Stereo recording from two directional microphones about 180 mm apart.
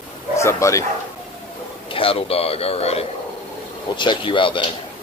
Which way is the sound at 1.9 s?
30° left (ahead or behind).